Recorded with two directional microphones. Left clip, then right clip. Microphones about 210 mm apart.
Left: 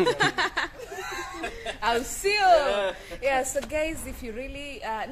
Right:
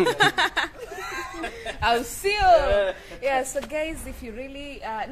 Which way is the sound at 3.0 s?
Centre (ahead or behind).